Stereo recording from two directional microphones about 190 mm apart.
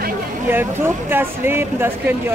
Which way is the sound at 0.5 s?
10° right (ahead or behind).